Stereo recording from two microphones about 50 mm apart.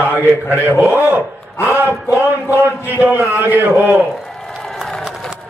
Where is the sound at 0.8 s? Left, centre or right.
Right.